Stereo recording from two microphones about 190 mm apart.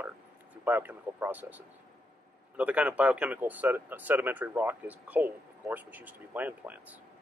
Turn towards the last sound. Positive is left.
turn(degrees=-10)  # may be behind; listen again after turning